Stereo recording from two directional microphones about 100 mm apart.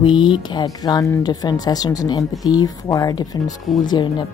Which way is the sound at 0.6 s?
40° left (ahead or behind).